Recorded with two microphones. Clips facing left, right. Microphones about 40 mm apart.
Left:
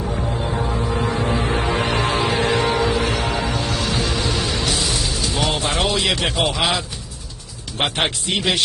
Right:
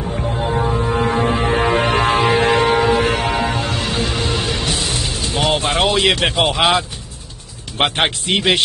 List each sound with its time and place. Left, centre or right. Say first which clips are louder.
0.0 s music: right 2 dB; centre
0.4 s music: right 4 dB; centre; by 6.8 s right
7.7 s a man's voice: right 4 dB; right